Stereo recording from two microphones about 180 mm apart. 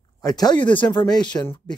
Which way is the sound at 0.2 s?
20° left (ahead or behind).